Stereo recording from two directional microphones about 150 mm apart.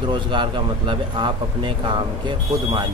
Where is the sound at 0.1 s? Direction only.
30° right (ahead or behind).